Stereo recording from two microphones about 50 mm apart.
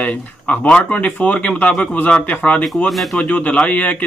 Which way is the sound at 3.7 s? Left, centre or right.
Left.